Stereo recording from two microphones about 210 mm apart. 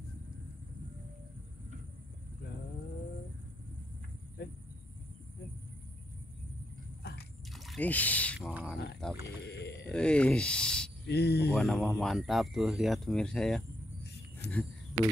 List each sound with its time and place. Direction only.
4.4 s cricket: 50° left (ahead or behind)
7.0 s biting: 50° left (ahead or behind)
7.5 s speech: centre (ahead or behind)
9.5 s a sound: 50° left (ahead or behind)
9.8 s speech: 5° left (ahead or behind)
11.1 s speech: 50° left (ahead or behind)
11.5 s speech: centre (ahead or behind)
14.4 s a sound: 50° left (ahead or behind)